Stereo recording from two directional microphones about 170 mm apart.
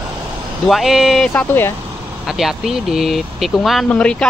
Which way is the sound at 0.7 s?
Centre (ahead or behind).